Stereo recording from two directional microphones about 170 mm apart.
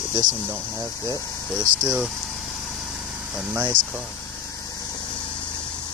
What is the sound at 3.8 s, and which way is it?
Vehicle, 50° right (ahead or behind).